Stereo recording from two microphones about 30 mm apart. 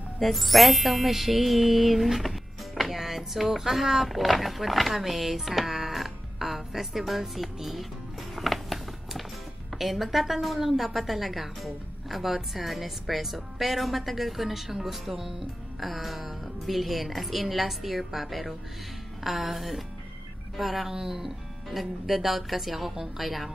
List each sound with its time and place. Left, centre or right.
0.2 s a woman's voice: centre
15.8 s a woman's voice: centre
20.9 s speech: right
21.2 s a woman's voice: centre